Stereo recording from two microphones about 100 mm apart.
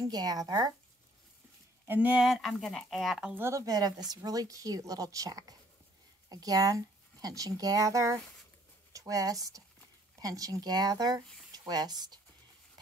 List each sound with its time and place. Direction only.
0.0 s speech: 40° right (ahead or behind)
1.9 s speech: 15° right (ahead or behind)
2.2 s speech: centre (ahead or behind)
3.3 s speech: 25° right (ahead or behind)
3.6 s speech: 40° right (ahead or behind)